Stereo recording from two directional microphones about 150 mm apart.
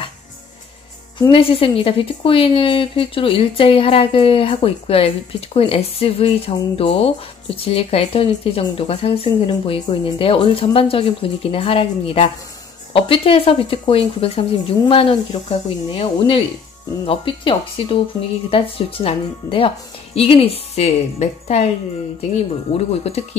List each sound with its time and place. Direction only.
1.3 s a woman's voice: 40° left (ahead or behind)
22.7 s a woman's voice: 45° left (ahead or behind)